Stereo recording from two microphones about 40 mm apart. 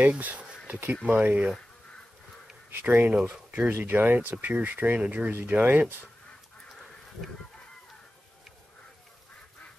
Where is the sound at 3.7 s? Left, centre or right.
Right.